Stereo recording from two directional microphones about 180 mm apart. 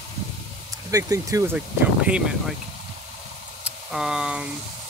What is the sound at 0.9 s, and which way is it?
Speech, 20° right (ahead or behind).